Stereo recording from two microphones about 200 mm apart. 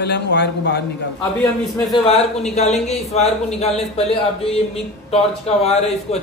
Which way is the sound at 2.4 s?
35° left (ahead or behind).